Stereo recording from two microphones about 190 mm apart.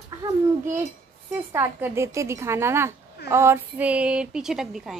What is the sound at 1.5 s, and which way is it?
A woman's voice, 15° right (ahead or behind).